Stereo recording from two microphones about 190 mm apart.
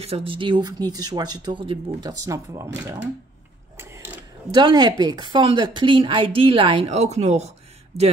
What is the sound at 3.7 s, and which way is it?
Speech, 15° right (ahead or behind).